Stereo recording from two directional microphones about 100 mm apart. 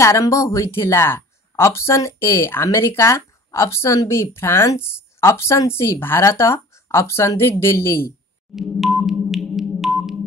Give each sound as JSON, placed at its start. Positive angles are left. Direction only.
{"t": 0.0, "sound": "speech", "side_deg": 30}
{"t": 8.5, "sound": "music", "side_deg": 0}